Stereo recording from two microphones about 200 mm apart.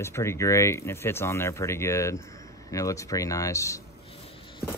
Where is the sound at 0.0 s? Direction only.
15° left (ahead or behind).